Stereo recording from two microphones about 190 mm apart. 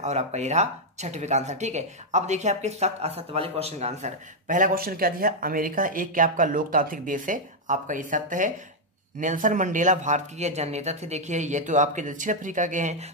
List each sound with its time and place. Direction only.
0.0 s speech: 35° right (ahead or behind)